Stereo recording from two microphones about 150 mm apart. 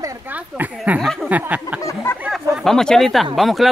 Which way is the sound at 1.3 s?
10° right (ahead or behind).